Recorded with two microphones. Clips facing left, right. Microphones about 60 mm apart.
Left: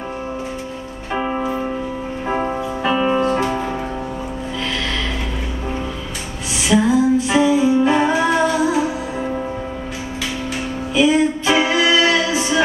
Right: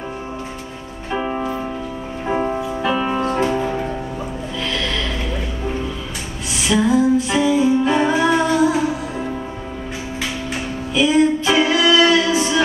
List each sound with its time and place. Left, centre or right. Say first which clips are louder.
1.2 s music: left 3 dB; centre
6.7 s music: left 1 dB; centre
11.0 s a capella: even; centre